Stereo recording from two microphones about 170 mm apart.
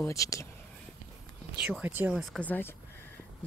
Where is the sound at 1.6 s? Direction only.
10° right (ahead or behind).